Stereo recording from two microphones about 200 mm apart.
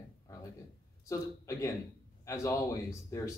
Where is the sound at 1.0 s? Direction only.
15° left (ahead or behind).